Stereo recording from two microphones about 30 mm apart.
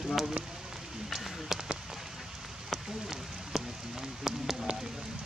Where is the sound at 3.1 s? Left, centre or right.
Centre.